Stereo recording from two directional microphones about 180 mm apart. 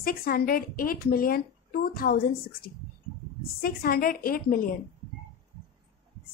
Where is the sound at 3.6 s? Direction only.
55° left (ahead or behind).